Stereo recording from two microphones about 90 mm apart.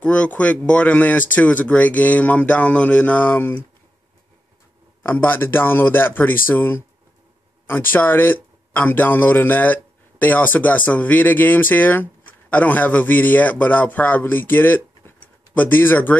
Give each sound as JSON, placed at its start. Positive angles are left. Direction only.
{"t": 0.0, "sound": "speech", "side_deg": 15}
{"t": 5.0, "sound": "a man's voice", "side_deg": 20}